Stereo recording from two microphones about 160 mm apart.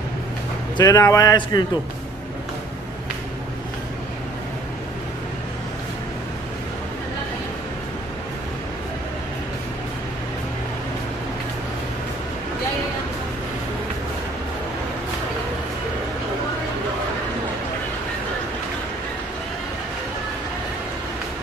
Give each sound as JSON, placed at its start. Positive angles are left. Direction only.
{"t": 0.7, "sound": "a man's voice", "side_deg": 20}